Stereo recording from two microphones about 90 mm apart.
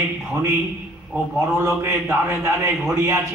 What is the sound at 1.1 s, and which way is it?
Speech, 15° right (ahead or behind).